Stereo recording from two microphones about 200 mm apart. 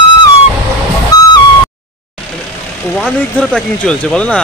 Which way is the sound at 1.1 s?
20° left (ahead or behind).